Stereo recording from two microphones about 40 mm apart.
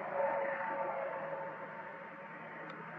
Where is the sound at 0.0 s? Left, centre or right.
Centre.